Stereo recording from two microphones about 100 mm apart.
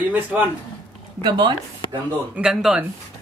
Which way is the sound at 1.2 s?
50° right (ahead or behind).